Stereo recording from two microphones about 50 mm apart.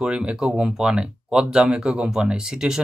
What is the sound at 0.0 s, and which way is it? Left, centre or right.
Speech, centre.